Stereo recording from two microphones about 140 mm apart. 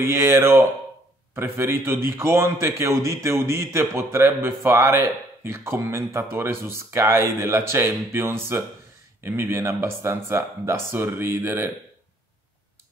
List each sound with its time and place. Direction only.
0.0 s a man's voice: 20° right (ahead or behind)